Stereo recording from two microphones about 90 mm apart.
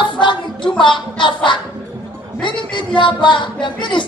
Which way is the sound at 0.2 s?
60° left (ahead or behind).